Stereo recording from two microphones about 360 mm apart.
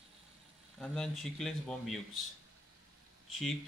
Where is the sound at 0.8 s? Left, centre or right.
Centre.